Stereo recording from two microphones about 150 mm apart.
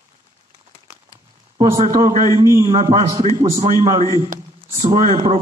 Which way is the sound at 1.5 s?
25° right (ahead or behind).